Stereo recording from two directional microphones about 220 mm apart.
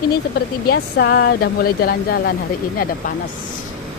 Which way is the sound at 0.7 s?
50° left (ahead or behind).